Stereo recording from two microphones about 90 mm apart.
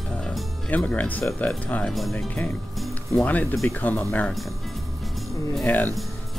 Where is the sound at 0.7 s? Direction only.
15° left (ahead or behind).